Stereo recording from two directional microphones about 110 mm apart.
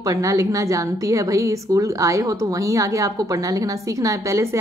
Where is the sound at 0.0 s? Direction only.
30° right (ahead or behind).